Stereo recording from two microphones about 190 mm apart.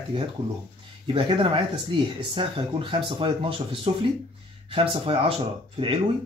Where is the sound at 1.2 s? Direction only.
25° right (ahead or behind).